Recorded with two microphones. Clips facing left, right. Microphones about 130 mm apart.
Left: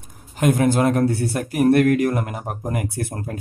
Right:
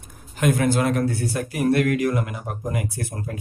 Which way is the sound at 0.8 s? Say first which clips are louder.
Left 4 dB; 40° left (ahead or behind).